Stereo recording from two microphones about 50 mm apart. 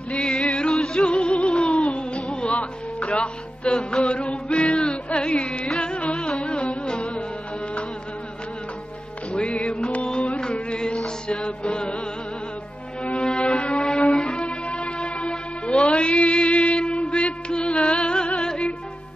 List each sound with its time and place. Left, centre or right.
0.1 s music: centre
9.3 s music: centre
13.0 s music: left